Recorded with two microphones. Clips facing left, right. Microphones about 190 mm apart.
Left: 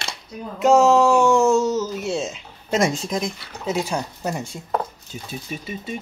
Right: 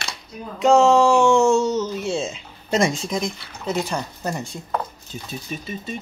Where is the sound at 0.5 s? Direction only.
5° left (ahead or behind).